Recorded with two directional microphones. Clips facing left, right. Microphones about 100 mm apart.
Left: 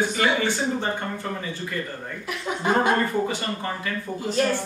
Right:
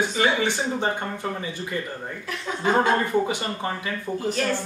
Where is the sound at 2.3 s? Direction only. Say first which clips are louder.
Even; 15° left (ahead or behind).